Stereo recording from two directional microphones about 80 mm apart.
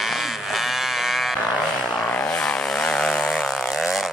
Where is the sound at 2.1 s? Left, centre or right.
Centre.